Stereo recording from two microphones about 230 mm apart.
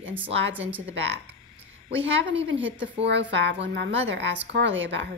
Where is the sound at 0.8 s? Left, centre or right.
Right.